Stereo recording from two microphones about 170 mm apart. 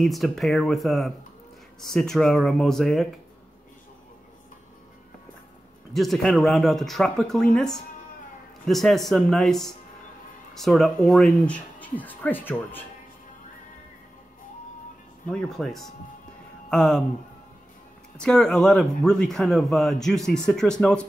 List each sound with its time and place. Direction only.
0.0 s speech: centre (ahead or behind)
5.9 s speech: centre (ahead or behind)
15.2 s speech: 5° left (ahead or behind)
18.1 s speech: 5° left (ahead or behind)